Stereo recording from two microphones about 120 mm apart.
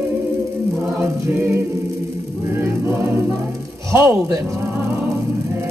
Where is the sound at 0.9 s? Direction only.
20° right (ahead or behind).